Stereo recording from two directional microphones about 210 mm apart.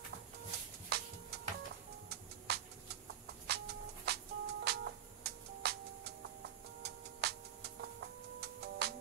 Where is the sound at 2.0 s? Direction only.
50° right (ahead or behind).